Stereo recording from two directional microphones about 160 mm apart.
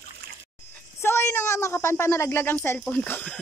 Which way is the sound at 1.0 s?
15° left (ahead or behind).